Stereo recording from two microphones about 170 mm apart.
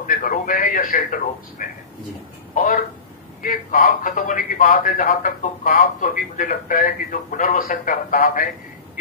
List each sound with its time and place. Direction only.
0.0 s a man's voice: 55° left (ahead or behind)